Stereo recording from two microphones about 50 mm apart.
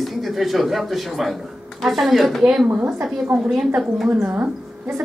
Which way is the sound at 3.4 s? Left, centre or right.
Centre.